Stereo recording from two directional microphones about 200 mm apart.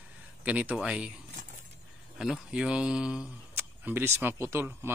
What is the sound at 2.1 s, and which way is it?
Speech, 5° right (ahead or behind).